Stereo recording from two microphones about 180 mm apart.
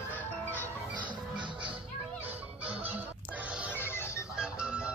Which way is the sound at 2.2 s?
10° right (ahead or behind).